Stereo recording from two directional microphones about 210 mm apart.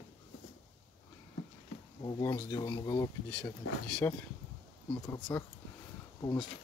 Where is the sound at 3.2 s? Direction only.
5° left (ahead or behind).